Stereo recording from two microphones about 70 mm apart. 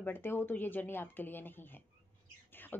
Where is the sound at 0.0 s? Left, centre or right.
Left.